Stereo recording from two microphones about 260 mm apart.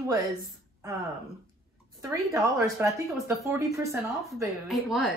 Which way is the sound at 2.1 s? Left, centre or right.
Centre.